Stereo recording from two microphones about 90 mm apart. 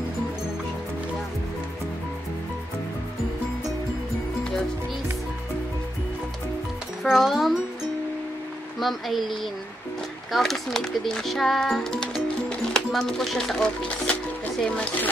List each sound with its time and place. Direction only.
7.0 s speech: 5° right (ahead or behind)
8.7 s speech: centre (ahead or behind)
10.3 s speech: 5° left (ahead or behind)
13.8 s music: 15° left (ahead or behind)